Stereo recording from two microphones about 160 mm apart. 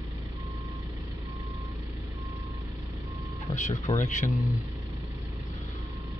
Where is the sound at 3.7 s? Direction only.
45° left (ahead or behind).